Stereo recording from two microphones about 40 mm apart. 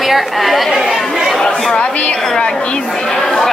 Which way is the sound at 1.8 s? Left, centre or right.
Left.